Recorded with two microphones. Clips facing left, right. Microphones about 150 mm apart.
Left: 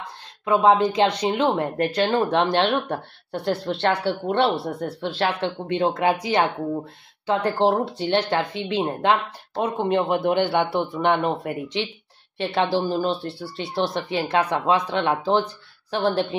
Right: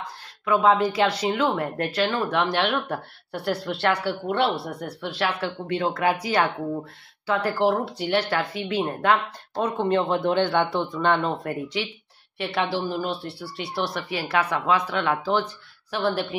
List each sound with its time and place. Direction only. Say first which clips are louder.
0.5 s speech: left 2 dB; 20° left (ahead or behind)